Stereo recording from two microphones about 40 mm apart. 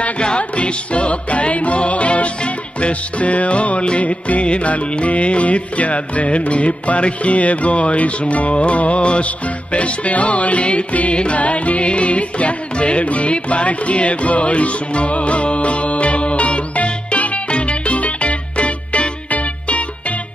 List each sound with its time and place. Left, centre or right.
0.2 s music: left